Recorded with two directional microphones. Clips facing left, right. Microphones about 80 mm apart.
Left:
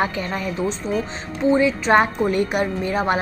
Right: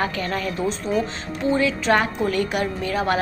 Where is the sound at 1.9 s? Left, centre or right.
Left.